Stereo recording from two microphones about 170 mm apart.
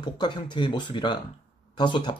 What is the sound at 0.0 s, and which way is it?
Speech, 25° left (ahead or behind).